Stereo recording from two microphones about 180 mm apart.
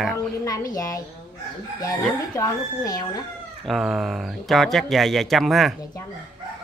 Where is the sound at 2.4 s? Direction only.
20° left (ahead or behind).